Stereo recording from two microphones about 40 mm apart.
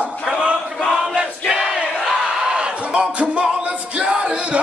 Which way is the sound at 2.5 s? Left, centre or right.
Right.